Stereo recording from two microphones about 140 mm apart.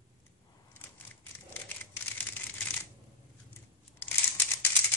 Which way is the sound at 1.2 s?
15° left (ahead or behind).